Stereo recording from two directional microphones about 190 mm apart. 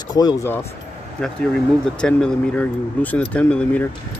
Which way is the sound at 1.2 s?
5° left (ahead or behind).